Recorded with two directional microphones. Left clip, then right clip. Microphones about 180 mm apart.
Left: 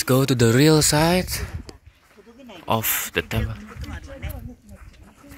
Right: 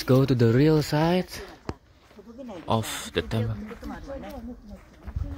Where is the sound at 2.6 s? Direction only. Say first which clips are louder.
Left 5 dB; 20° left (ahead or behind).